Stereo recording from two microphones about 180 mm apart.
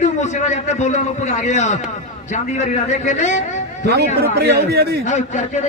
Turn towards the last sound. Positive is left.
turn(degrees=40)  # may be behind; listen again after turning